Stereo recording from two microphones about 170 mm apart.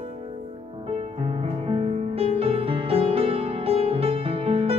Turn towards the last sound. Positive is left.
turn(degrees=-35)  # may be behind; listen again after turning